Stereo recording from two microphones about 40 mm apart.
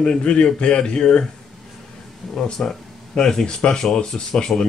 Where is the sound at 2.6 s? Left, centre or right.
Left.